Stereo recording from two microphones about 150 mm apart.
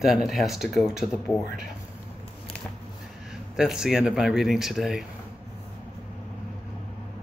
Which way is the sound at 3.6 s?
5° right (ahead or behind).